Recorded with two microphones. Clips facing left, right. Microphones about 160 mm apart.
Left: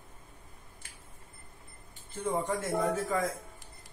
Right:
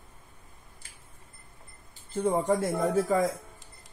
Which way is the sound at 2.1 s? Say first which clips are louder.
Right 6 dB; 35° right (ahead or behind).